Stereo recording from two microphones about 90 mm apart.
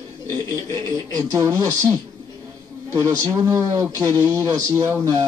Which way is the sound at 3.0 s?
35° right (ahead or behind).